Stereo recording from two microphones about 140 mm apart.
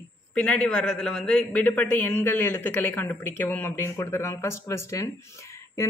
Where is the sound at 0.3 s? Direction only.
10° left (ahead or behind).